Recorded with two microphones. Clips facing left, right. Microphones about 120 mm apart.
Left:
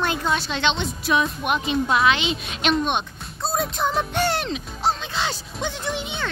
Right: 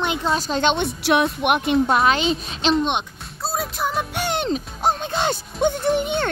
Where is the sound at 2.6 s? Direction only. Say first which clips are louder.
Right 2 dB; 30° right (ahead or behind).